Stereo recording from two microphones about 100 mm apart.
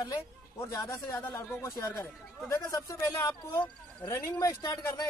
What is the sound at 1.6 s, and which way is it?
Speech, 35° left (ahead or behind).